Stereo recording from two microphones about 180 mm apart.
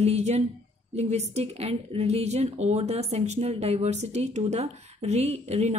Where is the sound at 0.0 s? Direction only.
35° right (ahead or behind).